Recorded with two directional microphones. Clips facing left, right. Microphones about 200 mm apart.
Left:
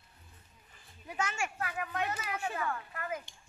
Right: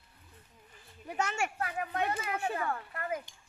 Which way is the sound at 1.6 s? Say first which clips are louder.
Right 2 dB; 30° right (ahead or behind).